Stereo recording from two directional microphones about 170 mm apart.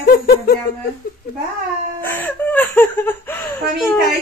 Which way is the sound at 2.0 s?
10° left (ahead or behind).